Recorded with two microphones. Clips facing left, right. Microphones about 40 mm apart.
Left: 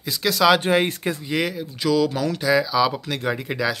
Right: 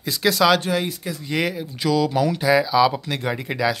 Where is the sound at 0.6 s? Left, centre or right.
Left.